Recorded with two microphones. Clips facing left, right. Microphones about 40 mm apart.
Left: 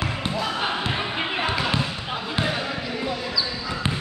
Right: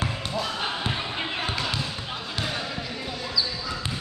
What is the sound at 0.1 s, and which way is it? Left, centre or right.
Basketball bounce, left.